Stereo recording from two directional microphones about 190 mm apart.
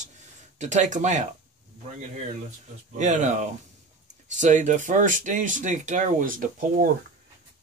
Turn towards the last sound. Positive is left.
turn(degrees=-45)  # may be behind; listen again after turning